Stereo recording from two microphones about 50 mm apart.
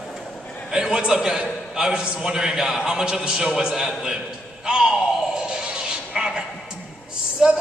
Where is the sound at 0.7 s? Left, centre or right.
Centre.